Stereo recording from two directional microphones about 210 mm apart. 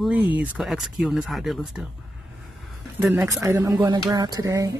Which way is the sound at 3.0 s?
10° right (ahead or behind).